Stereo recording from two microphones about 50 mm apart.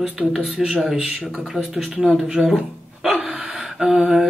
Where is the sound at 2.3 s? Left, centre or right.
Centre.